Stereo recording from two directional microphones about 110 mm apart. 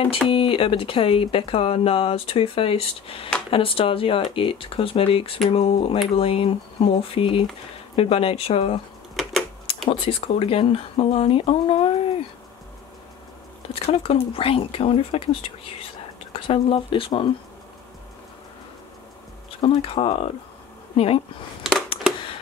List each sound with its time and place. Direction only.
0.3 s speech: 55° left (ahead or behind)
9.1 s typewriter: centre (ahead or behind)
9.8 s speech: 55° left (ahead or behind)
13.8 s speech: 60° left (ahead or behind)
16.3 s speech: 55° left (ahead or behind)
19.6 s speech: 55° left (ahead or behind)